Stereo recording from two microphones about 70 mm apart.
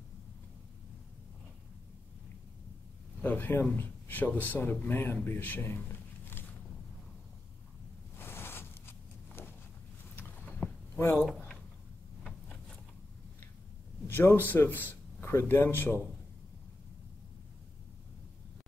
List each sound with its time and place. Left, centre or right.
3.2 s speech: left
8.2 s a sound: left
10.1 s vehicle: left
11.0 s speech: left
14.0 s a man's voice: left